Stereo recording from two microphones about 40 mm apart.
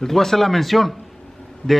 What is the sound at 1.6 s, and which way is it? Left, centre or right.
Speech, left.